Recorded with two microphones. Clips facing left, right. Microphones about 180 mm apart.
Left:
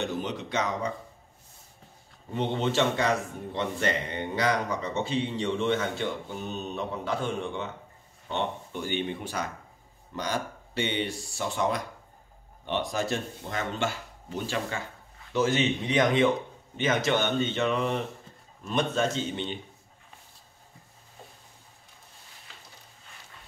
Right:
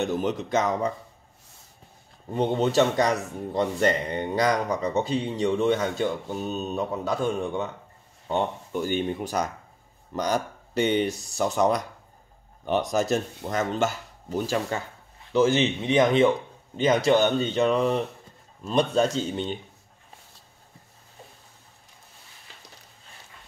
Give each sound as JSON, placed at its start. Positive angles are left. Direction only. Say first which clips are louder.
{"t": 0.0, "sound": "speech", "louder": "right 5 dB", "side_deg": -45}
{"t": 2.3, "sound": "speech", "louder": "right 5 dB", "side_deg": -40}
{"t": 15.3, "sound": "speech", "louder": "right 4 dB", "side_deg": -25}